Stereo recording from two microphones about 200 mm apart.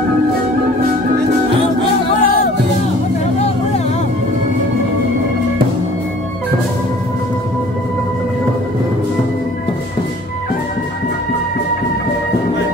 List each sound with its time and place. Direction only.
2.2 s music: 45° left (ahead or behind)